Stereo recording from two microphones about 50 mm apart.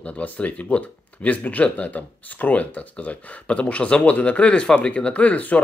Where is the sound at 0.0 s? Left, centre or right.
Left.